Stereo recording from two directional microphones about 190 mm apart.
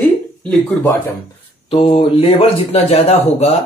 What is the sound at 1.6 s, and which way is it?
Speech, 30° left (ahead or behind).